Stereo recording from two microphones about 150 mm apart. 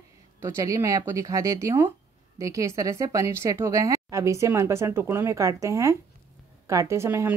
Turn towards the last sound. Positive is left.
turn(degrees=-15)  # may be behind; listen again after turning